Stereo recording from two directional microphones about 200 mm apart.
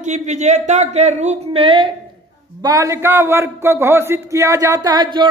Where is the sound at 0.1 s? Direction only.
35° right (ahead or behind).